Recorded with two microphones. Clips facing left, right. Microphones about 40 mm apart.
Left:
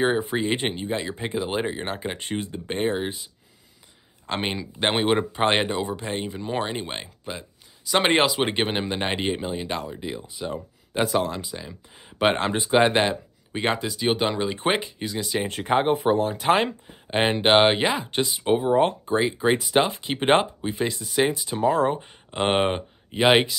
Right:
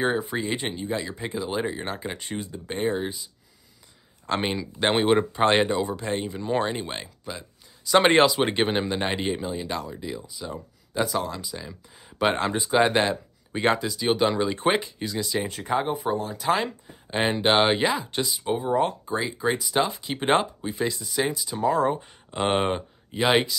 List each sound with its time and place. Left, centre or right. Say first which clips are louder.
0.2 s speech: left 3 dB; left
4.3 s speech: right 1 dB; centre
15.4 s speech: left 4 dB; left
17.1 s speech: left 3 dB; left
18.4 s speech: left 4 dB; left